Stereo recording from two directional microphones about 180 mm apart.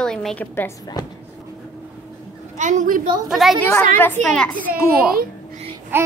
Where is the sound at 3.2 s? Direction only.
Centre (ahead or behind).